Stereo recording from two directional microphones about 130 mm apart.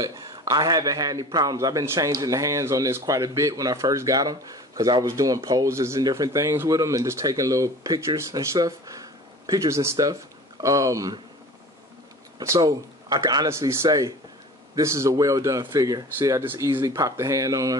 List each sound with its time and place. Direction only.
0.0 s a man's voice: 25° right (ahead or behind)
12.4 s a man's voice: 30° right (ahead or behind)